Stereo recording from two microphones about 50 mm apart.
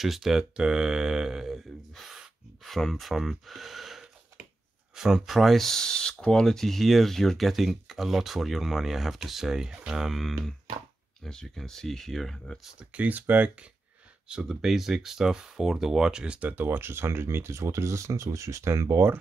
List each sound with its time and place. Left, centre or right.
0.0 s speech: centre
2.0 s gasp: centre
2.8 s speech: centre
11.2 s speech: centre
12.9 s speech: right
14.2 s speech: centre
16.3 s speech: right
16.6 s speech: right